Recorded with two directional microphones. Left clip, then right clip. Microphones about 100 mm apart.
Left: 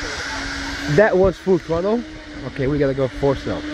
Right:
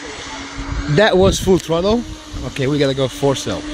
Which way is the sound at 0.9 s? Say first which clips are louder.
Right 2 dB; 60° right (ahead or behind).